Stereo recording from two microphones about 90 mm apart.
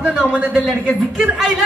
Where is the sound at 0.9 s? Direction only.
5° left (ahead or behind).